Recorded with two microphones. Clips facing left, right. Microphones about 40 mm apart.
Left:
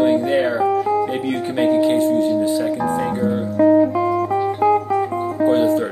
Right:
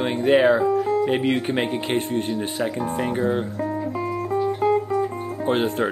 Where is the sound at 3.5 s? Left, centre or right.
Left.